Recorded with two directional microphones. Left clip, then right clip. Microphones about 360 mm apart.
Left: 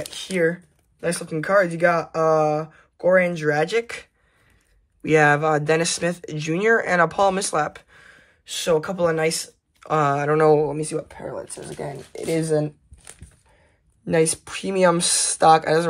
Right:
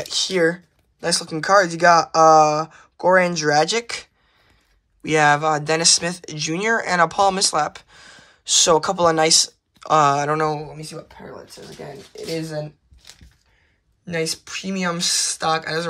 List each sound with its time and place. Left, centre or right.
0.1 s speech: centre
10.7 s speech: centre
14.0 s speech: centre